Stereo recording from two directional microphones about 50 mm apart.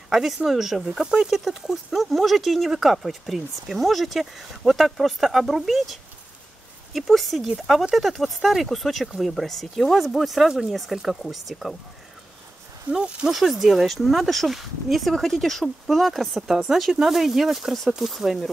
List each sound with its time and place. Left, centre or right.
0.1 s speech: centre
0.9 s speech: centre
12.9 s speech: right
13.3 s speech: centre